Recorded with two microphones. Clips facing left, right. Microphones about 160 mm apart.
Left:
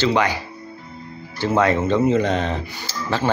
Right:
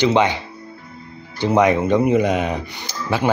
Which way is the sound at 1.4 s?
15° right (ahead or behind).